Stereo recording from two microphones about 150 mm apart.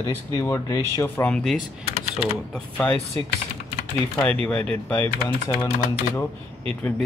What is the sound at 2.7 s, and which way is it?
Speech, 10° left (ahead or behind).